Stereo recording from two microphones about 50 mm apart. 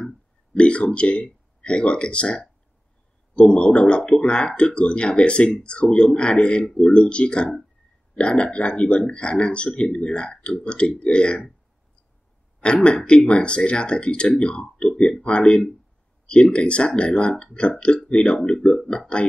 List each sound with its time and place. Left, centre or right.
0.6 s speech: left
12.5 s speech: centre